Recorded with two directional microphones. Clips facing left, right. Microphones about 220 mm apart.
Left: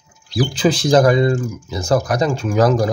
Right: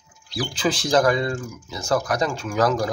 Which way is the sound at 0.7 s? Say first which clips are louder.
Left 5 dB; 15° left (ahead or behind).